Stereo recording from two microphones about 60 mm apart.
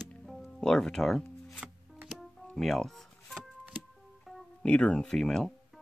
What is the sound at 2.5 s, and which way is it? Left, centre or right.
Music, centre.